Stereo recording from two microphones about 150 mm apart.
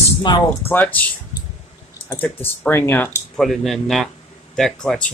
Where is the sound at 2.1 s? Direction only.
15° left (ahead or behind).